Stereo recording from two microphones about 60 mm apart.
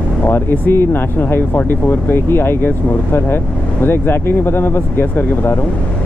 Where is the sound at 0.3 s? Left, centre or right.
Left.